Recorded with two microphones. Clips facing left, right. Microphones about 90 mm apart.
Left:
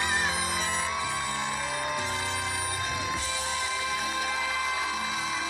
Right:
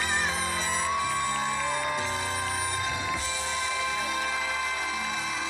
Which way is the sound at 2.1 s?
20° right (ahead or behind).